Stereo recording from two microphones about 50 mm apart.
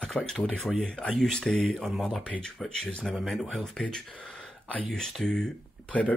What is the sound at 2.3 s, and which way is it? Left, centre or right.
Speech, centre.